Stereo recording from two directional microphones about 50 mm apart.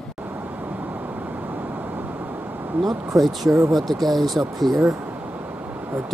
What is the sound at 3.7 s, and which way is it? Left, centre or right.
Speech, centre.